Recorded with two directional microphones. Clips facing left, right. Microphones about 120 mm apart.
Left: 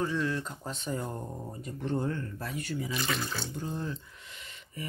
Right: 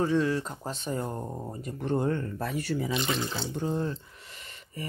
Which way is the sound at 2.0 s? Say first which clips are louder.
Right 5 dB; 60° right (ahead or behind).